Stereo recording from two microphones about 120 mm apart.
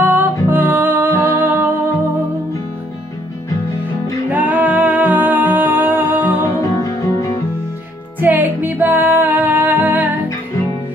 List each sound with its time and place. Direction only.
0.0 s music: 15° right (ahead or behind)
4.3 s music: 15° right (ahead or behind)
6.4 s music: 30° left (ahead or behind)
8.2 s music: 15° right (ahead or behind)